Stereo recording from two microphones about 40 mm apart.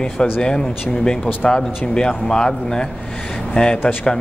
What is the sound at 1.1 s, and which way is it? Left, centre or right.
Speech, centre.